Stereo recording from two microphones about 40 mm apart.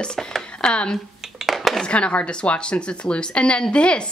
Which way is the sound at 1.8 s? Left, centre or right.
Left.